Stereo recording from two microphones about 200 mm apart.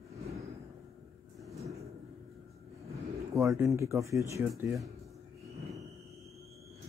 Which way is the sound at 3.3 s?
15° right (ahead or behind).